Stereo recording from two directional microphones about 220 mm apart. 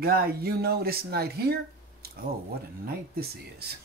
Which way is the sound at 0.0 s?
45° right (ahead or behind).